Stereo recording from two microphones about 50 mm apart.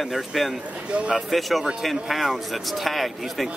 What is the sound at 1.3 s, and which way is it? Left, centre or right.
A man's voice, centre.